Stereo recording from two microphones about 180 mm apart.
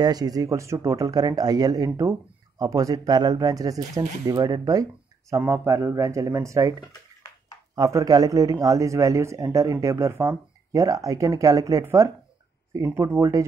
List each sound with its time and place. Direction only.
0.0 s speech: 20° right (ahead or behind)
7.7 s speech: 20° right (ahead or behind)